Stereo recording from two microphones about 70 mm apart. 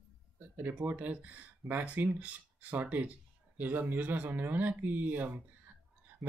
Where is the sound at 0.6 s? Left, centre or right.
Right.